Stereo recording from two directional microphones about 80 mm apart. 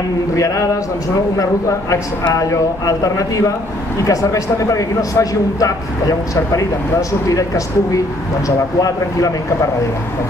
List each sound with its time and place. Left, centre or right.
2.3 s a man's voice: left